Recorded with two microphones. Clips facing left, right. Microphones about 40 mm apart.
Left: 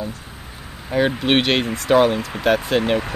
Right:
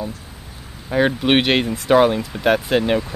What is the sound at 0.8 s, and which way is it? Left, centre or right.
Speech, centre.